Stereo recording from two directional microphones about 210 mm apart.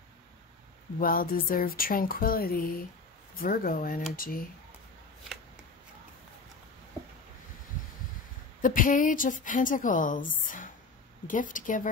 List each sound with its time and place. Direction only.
0.9 s speech: 45° left (ahead or behind)
8.5 s a woman's voice: 40° left (ahead or behind)